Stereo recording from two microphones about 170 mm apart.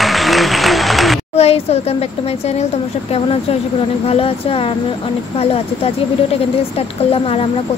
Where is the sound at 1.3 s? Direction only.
35° left (ahead or behind).